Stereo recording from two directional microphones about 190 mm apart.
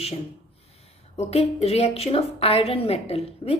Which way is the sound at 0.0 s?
35° left (ahead or behind).